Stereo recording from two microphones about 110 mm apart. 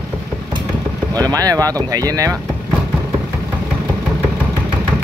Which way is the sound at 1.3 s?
35° right (ahead or behind).